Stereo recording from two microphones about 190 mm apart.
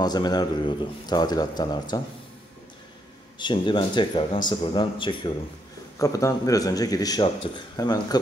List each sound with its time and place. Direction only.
0.0 s a man's voice: 20° left (ahead or behind)
3.3 s a man's voice: 25° left (ahead or behind)